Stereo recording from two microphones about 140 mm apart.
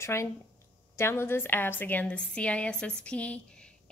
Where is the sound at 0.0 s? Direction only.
20° left (ahead or behind).